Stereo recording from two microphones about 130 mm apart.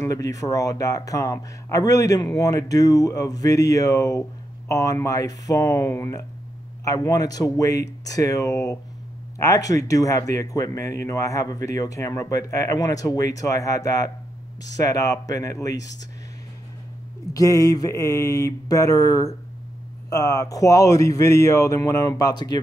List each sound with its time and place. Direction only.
0.0 s speech: 25° left (ahead or behind)
17.3 s speech: 25° left (ahead or behind)